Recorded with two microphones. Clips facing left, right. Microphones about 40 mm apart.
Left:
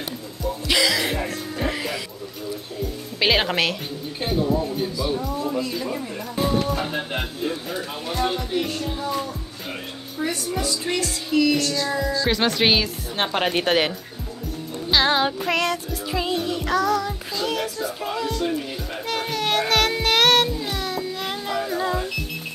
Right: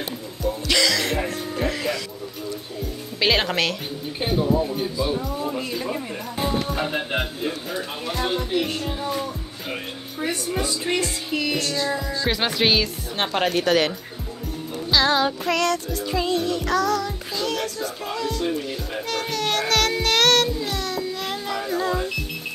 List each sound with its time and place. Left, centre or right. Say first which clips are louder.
0.4 s music: even; centre
4.5 s speech: right 1 dB; centre
5.7 s speech: even; centre
8.5 s speech: right 1 dB; right
10.2 s speech: even; right
12.3 s speech: even; centre
12.6 s music: left 1 dB; centre
13.5 s music: right 2 dB; left
14.9 s music: even; left; by 22.1 s centre